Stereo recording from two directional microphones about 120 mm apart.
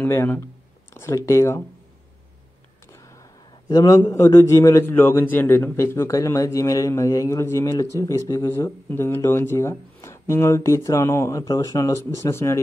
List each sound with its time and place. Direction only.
0.0 s a man's voice: 15° left (ahead or behind)
3.6 s a man's voice: 30° left (ahead or behind)